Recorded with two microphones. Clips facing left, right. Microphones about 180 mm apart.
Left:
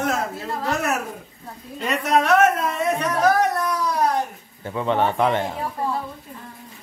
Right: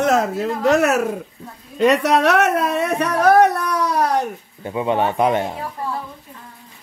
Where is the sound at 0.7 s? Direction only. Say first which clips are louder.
Right 8 dB; 80° right.